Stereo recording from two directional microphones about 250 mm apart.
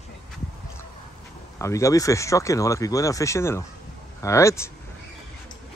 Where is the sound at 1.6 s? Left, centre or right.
Centre.